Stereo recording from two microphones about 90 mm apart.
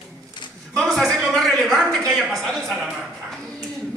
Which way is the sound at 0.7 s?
Centre (ahead or behind).